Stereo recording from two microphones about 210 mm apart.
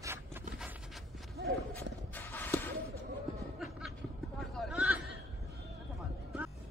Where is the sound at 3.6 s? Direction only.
Centre (ahead or behind).